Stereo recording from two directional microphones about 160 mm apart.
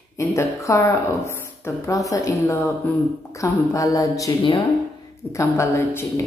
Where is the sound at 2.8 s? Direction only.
10° left (ahead or behind).